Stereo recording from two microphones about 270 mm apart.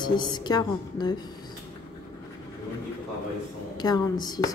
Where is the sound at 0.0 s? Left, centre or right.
Centre.